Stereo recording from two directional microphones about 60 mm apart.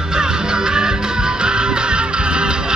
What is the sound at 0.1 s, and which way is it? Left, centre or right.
Music, centre.